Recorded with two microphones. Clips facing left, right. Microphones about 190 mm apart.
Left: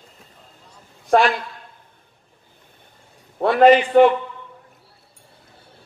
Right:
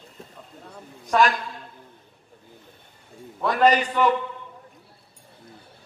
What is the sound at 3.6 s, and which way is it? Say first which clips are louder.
Speech: left 7 dB; 40° right (ahead or behind).